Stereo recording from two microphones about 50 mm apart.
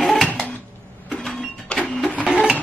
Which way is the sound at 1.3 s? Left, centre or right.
Centre.